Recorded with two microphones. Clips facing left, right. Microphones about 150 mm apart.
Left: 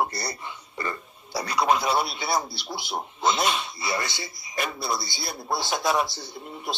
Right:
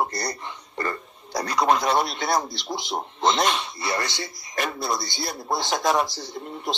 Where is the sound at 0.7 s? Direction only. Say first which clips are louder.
Right 4 dB; 50° right (ahead or behind).